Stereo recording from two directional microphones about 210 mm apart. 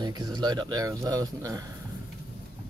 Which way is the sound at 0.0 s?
20° right (ahead or behind).